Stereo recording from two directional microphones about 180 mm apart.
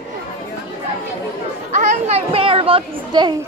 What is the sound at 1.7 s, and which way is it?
Children playing, 35° right (ahead or behind).